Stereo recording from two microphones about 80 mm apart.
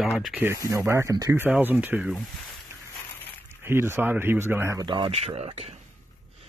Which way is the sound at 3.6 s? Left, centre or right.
Right.